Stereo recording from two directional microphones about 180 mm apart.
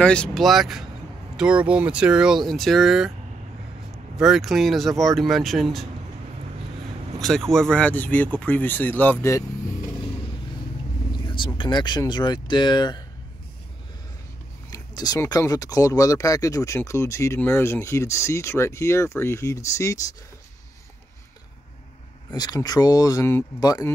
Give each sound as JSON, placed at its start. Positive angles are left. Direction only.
{"t": 0.0, "sound": "speech", "side_deg": 5}
{"t": 4.2, "sound": "speech", "side_deg": 0}
{"t": 7.2, "sound": "speech", "side_deg": 0}
{"t": 11.2, "sound": "speech", "side_deg": 25}
{"t": 14.7, "sound": "speech", "side_deg": 20}
{"t": 22.3, "sound": "speech", "side_deg": 20}